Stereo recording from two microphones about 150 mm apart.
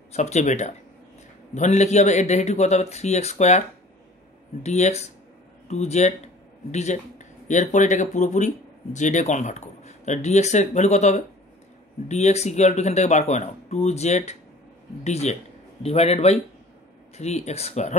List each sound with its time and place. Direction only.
0.1 s speech: 50° left (ahead or behind)
4.6 s a man's voice: 50° left (ahead or behind)